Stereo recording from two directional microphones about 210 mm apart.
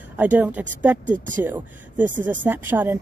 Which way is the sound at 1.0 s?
40° right (ahead or behind).